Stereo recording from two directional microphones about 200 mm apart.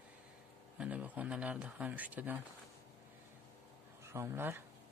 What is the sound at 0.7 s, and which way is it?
Speech, 5° right (ahead or behind).